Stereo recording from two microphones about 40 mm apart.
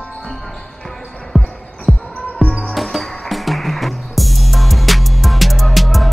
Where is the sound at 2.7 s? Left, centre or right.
Centre.